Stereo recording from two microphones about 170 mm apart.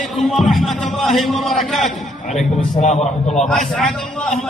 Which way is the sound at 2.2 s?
40° left (ahead or behind).